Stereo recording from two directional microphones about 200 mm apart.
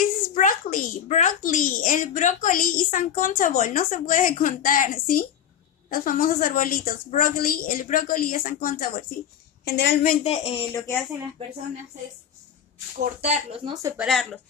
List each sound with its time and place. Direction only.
0.3 s a child's voice: 40° left (ahead or behind)
9.7 s a woman's voice: 55° left (ahead or behind)
10.2 s speech: 30° left (ahead or behind)
13.2 s speech: 30° right (ahead or behind)
13.8 s speech: 5° right (ahead or behind)